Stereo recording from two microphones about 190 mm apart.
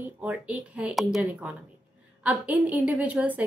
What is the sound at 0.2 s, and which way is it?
A woman's voice, 10° right (ahead or behind).